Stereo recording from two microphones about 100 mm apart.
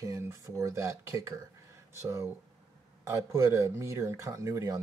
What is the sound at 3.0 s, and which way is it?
Speech, 30° right (ahead or behind).